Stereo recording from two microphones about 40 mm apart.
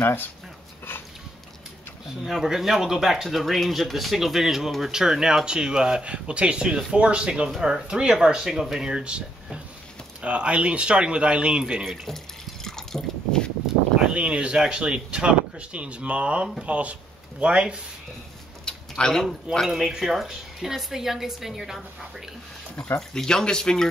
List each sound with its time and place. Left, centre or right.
0.0 s speech: left
2.2 s a woman's voice: centre
8.9 s speech: right
11.8 s speech: centre
12.6 s liquid: centre
14.0 s speech: right
18.7 s a sound: centre
19.9 s a woman's voice: centre
22.9 s speech: centre